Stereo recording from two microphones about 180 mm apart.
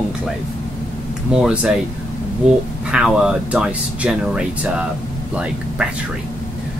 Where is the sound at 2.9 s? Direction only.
5° right (ahead or behind).